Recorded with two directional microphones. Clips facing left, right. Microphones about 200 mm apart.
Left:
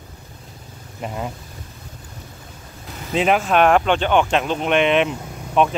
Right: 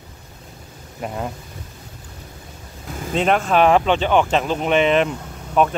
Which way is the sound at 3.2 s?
5° left (ahead or behind).